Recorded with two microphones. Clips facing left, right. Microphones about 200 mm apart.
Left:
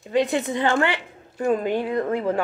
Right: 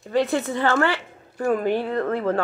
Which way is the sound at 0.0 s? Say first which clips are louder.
Even; 20° left (ahead or behind).